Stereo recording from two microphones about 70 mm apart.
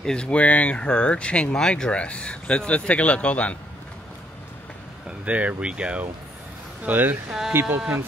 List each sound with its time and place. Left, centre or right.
0.0 s speech: centre
5.0 s speech: centre
6.8 s speech: right
7.2 s speech: centre